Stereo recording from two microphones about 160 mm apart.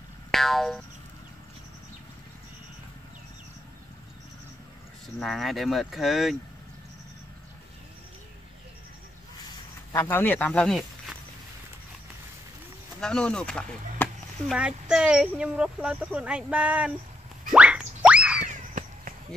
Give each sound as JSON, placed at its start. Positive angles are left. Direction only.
{"t": 0.3, "sound": "boing", "side_deg": 0}
{"t": 5.2, "sound": "speech", "side_deg": 0}
{"t": 9.9, "sound": "speech", "side_deg": 15}
{"t": 13.0, "sound": "speech", "side_deg": 5}
{"t": 14.0, "sound": "a sound", "side_deg": 10}
{"t": 14.5, "sound": "speech", "side_deg": -5}
{"t": 17.5, "sound": "boing", "side_deg": -5}
{"t": 18.5, "sound": "a sound", "side_deg": -55}